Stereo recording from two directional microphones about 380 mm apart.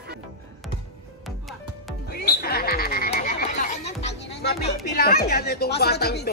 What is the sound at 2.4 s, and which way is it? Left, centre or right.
Frog, left.